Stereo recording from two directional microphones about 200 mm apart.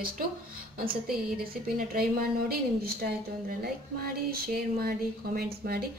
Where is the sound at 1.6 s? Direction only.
50° right (ahead or behind).